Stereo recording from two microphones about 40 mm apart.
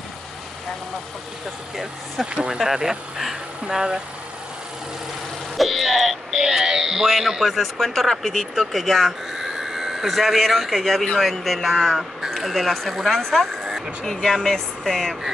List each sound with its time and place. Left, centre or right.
2.2 s speech: right
2.6 s speech: centre
5.6 s speech: centre
12.0 s speech: centre